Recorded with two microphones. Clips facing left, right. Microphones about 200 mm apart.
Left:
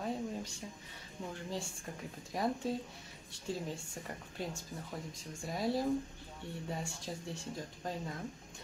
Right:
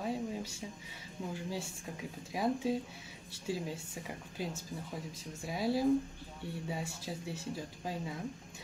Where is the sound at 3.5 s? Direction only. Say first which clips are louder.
Right 2 dB; 5° right (ahead or behind).